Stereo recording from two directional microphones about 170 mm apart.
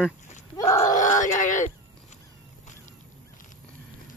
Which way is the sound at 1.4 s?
45° left (ahead or behind).